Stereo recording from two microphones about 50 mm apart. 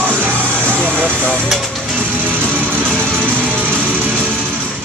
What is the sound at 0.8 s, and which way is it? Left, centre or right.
Speech, right.